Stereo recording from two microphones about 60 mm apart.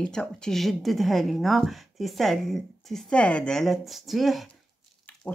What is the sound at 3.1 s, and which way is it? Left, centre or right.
Speech, centre.